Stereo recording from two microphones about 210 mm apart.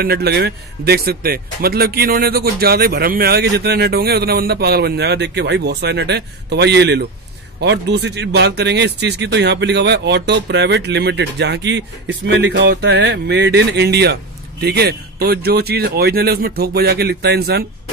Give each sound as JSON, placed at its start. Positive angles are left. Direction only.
{"t": 0.0, "sound": "speech", "side_deg": -50}